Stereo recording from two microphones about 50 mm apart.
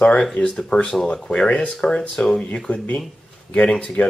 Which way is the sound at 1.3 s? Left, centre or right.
Centre.